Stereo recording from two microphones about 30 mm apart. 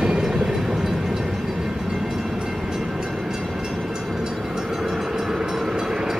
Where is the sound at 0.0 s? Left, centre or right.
Right.